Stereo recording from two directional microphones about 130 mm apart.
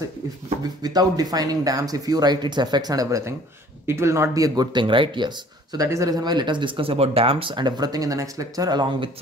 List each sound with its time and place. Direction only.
0.8 s speech: 30° right (ahead or behind)